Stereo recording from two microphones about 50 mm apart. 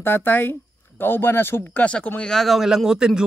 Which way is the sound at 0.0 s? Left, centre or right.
Left.